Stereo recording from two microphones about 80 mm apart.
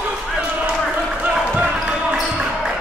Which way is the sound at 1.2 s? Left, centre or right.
Centre.